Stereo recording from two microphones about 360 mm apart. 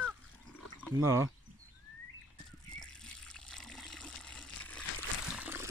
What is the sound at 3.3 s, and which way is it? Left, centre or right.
Water, centre.